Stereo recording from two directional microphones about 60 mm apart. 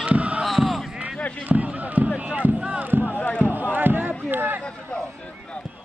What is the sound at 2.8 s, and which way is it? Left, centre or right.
Music, right.